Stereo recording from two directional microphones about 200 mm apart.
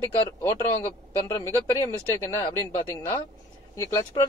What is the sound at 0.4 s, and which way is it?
Speech, 15° left (ahead or behind).